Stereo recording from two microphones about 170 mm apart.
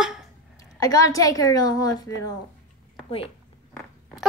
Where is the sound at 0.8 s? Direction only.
20° left (ahead or behind).